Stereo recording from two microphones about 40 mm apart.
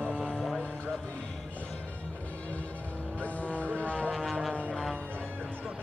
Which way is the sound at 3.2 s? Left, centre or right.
Left.